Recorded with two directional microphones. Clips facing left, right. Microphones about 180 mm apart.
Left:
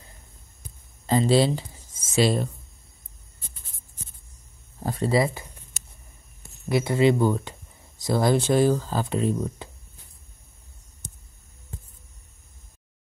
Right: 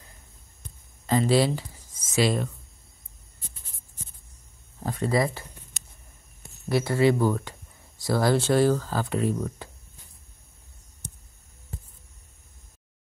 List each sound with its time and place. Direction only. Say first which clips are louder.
1.0 s speech: left 2 dB; 25° left (ahead or behind)
4.8 s speech: left 2 dB; 30° left (ahead or behind)
6.7 s speech: left 1 dB; 20° left (ahead or behind)